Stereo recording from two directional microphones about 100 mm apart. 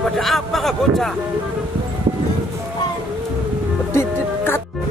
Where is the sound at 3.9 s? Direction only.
25° left (ahead or behind).